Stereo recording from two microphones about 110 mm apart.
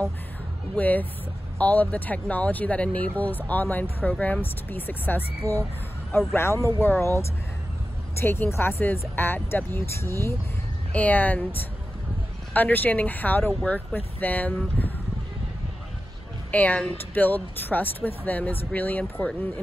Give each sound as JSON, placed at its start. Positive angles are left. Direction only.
{"t": 0.7, "sound": "speech", "side_deg": 15}
{"t": 5.4, "sound": "speech", "side_deg": -25}
{"t": 6.1, "sound": "speech", "side_deg": 25}
{"t": 8.2, "sound": "speech", "side_deg": 20}
{"t": 10.9, "sound": "speech", "side_deg": 15}
{"t": 12.5, "sound": "speech", "side_deg": 15}
{"t": 16.5, "sound": "speech", "side_deg": 15}